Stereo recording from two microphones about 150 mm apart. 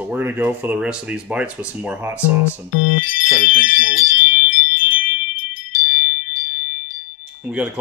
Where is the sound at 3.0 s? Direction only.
65° left (ahead or behind).